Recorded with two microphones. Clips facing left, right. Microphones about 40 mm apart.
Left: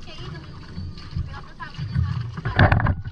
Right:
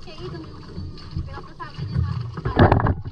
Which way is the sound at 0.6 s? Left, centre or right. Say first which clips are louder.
Right 1 dB; left.